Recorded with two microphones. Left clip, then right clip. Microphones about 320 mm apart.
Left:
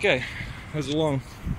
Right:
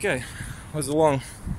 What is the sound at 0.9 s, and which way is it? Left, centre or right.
Speech, right.